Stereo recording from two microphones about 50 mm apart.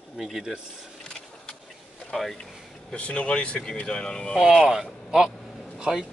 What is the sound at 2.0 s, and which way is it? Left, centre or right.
Speech, centre.